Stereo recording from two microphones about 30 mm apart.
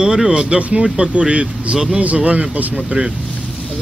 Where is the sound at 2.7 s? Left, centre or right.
Right.